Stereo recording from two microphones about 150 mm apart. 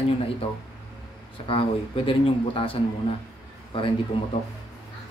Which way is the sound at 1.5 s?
35° left (ahead or behind).